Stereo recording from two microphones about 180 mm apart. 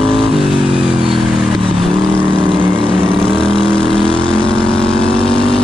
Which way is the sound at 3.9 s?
5° left (ahead or behind).